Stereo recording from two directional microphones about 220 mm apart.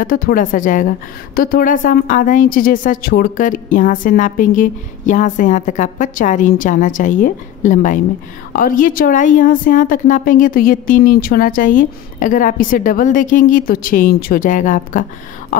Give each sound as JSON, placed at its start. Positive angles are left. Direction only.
{"t": 0.0, "sound": "a woman's voice", "side_deg": 40}